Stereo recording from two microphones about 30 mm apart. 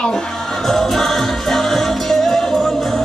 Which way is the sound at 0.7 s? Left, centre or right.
Centre.